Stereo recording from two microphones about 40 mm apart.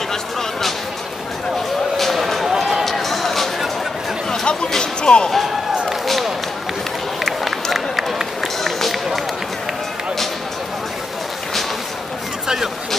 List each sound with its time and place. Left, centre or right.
0.1 s a sound: centre
2.0 s a sound: centre
2.6 s run: centre
4.3 s music: left
6.0 s run: centre
7.7 s run: centre
8.6 s run: centre